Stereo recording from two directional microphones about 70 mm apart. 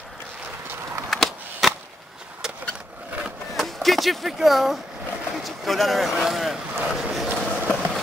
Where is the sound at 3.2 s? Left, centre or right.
Centre.